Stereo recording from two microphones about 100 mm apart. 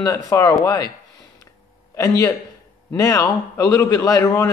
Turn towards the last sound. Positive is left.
turn(degrees=30)  # may be behind; listen again after turning